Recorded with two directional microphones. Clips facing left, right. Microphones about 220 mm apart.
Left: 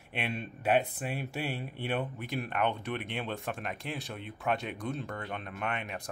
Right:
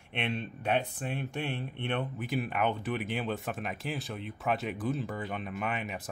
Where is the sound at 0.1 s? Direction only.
5° left (ahead or behind).